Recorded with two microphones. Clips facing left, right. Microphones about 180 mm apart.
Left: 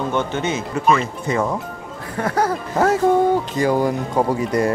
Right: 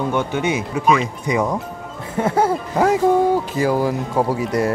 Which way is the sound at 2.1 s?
25° right (ahead or behind).